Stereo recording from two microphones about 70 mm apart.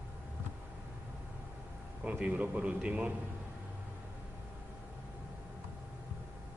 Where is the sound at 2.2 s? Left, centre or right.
Right.